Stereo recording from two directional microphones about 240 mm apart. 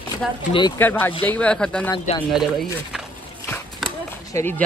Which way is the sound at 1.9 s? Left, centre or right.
Centre.